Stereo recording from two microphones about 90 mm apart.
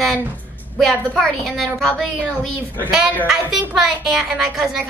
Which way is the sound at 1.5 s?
5° left (ahead or behind).